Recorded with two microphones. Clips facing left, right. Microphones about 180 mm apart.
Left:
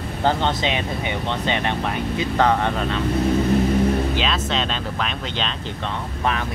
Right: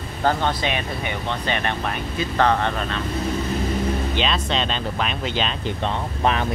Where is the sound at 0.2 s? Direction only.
20° left (ahead or behind).